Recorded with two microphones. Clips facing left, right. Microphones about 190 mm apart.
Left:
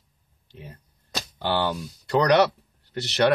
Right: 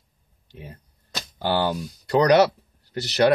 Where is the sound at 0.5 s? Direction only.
15° right (ahead or behind).